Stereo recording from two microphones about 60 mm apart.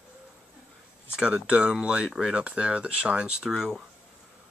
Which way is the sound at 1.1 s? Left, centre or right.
Centre.